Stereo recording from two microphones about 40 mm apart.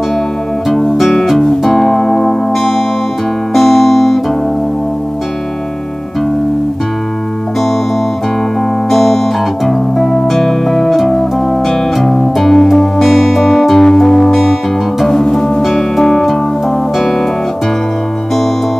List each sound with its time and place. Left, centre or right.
0.7 s music: centre
8.9 s music: centre